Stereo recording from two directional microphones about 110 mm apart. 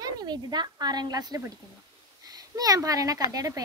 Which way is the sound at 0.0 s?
40° right (ahead or behind).